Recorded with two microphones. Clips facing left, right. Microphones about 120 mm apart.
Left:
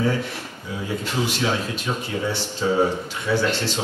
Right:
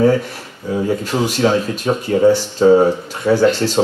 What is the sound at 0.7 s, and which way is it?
Speech, 45° right (ahead or behind).